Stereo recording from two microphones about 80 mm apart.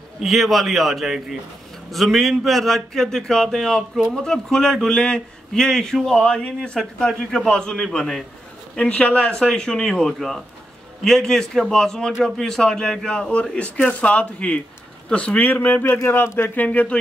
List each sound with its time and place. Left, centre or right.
0.2 s a man's voice: centre